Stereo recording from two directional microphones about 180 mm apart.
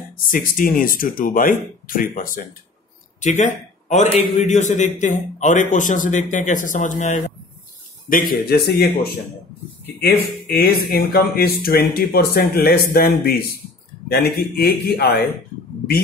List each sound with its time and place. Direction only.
0.3 s a man's voice: 50° left (ahead or behind)
14.5 s speech: 55° left (ahead or behind)